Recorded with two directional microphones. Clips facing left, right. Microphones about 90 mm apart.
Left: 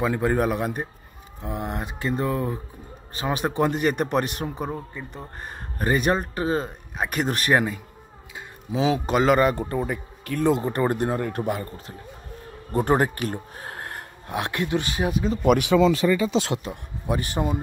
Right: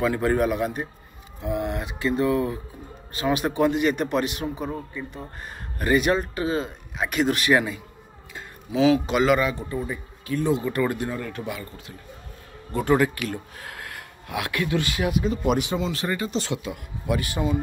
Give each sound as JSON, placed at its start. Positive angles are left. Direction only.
{"t": 0.0, "sound": "a man's voice", "side_deg": 25}
{"t": 0.4, "sound": "speech", "side_deg": 40}
{"t": 8.7, "sound": "speech", "side_deg": 35}
{"t": 9.5, "sound": "speech", "side_deg": 55}
{"t": 10.7, "sound": "speech", "side_deg": 40}
{"t": 15.4, "sound": "speech", "side_deg": 65}
{"t": 16.6, "sound": "speech", "side_deg": 35}